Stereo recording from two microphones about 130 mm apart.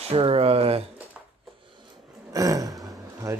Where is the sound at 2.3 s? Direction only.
30° right (ahead or behind).